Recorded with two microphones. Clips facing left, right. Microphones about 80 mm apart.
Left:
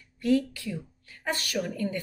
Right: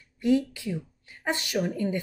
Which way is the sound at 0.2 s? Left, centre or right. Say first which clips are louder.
Right 1 dB; centre.